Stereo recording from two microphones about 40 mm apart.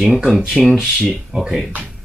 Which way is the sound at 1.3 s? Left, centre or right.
Centre.